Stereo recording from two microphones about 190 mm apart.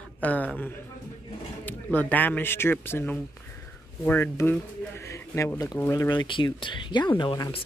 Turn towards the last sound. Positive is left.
turn(degrees=25)  # may be behind; listen again after turning